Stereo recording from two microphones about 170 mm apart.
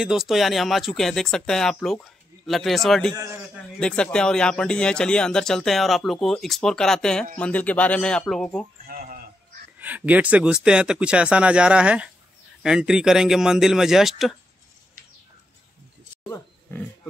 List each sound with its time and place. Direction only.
0.0 s speech: 5° right (ahead or behind)
8.8 s a sound: 55° right (ahead or behind)
9.8 s speech: 10° right (ahead or behind)